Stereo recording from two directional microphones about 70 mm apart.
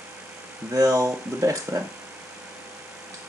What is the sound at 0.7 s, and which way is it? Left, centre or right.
Speech, right.